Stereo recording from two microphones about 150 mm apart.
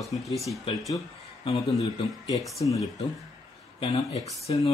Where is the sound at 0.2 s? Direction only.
Centre (ahead or behind).